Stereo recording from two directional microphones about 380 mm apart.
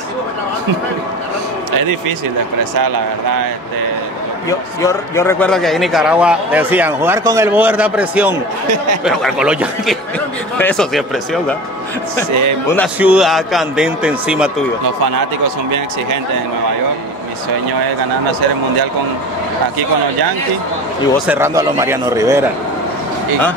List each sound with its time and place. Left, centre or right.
1.8 s speech: right
4.5 s a man's voice: centre
12.6 s a man's voice: centre
21.3 s speech: centre